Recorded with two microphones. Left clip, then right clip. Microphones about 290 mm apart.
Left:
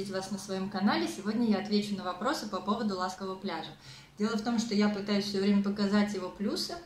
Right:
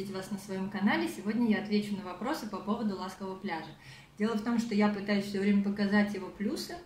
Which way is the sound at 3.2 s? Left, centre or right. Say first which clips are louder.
Left 2 dB; left.